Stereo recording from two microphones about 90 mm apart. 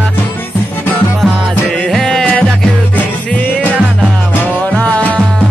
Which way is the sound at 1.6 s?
15° left (ahead or behind).